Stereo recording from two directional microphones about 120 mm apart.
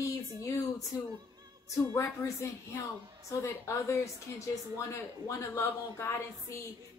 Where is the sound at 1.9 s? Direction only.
20° left (ahead or behind).